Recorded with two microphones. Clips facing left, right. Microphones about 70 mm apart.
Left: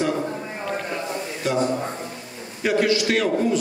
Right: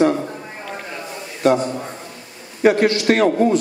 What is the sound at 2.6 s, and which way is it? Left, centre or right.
Speech, right.